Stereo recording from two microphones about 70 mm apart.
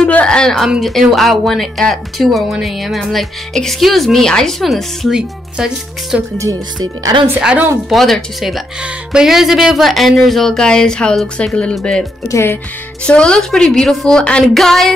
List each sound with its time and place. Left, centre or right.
0.1 s speech: centre
0.7 s speech: centre
6.1 s speech: centre
6.8 s speech: right
7.3 s speech: centre
7.9 s a woman's voice: centre
12.3 s speech: left
13.0 s a woman's voice: centre